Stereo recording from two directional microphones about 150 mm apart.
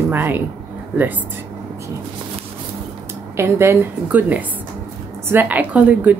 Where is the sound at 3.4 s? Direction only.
15° right (ahead or behind).